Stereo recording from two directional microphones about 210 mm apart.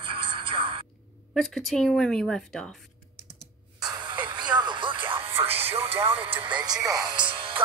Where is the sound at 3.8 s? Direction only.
20° right (ahead or behind).